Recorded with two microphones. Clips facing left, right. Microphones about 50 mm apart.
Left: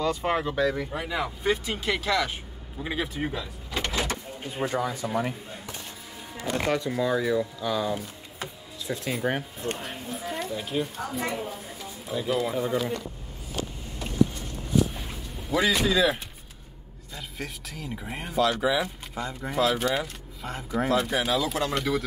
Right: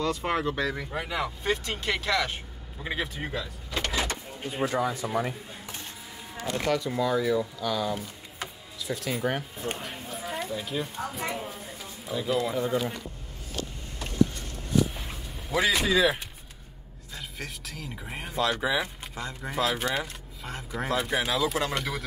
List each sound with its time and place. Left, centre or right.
0.0 s speech: centre
3.3 s vehicle: centre
4.4 s speech: centre
6.3 s a sound: centre
6.7 s speech: left
7.0 s speech: centre
7.6 s speech: centre
8.4 s music: left
9.6 s speech: centre
15.5 s speech: centre